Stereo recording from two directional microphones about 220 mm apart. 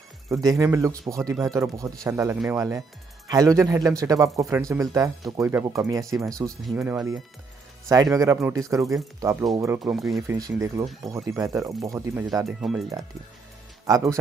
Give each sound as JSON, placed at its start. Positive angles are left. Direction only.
{"t": 0.3, "sound": "speech", "side_deg": -15}
{"t": 10.2, "sound": "speech", "side_deg": -15}
{"t": 12.4, "sound": "speech", "side_deg": 0}
{"t": 13.8, "sound": "speech", "side_deg": -15}